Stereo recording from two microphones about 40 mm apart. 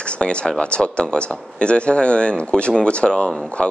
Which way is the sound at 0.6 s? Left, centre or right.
Left.